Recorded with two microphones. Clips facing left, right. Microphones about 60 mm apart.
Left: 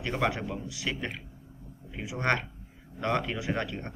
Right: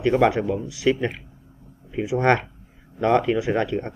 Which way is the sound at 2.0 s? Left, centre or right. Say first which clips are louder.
Right 9 dB; centre.